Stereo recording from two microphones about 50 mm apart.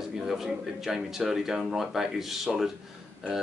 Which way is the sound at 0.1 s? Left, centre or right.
Centre.